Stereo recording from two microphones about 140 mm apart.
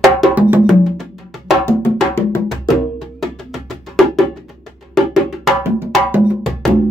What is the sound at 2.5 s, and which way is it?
Wood block, centre (ahead or behind).